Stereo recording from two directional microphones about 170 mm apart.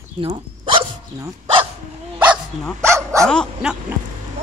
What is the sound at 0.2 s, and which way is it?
Speech, 30° right (ahead or behind).